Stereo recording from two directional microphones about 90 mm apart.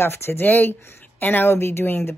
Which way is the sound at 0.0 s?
25° left (ahead or behind).